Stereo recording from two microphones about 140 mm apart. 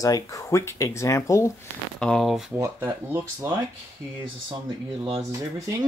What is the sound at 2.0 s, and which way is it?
Speech, 5° left (ahead or behind).